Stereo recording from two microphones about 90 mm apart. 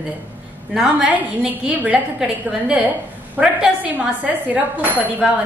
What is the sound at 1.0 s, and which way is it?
Speech, 15° right (ahead or behind).